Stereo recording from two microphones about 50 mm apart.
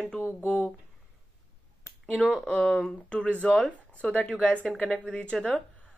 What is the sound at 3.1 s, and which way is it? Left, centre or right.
Speech, left.